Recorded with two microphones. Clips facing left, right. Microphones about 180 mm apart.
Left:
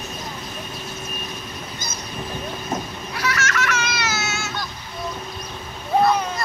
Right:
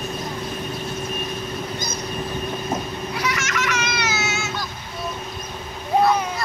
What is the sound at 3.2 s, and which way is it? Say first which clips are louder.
Baby laughter: left 3 dB; 15° right (ahead or behind).